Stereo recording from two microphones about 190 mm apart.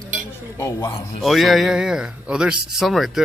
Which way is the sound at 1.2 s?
Centre (ahead or behind).